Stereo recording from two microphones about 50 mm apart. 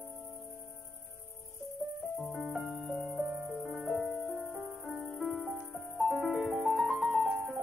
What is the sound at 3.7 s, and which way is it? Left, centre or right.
Music, centre.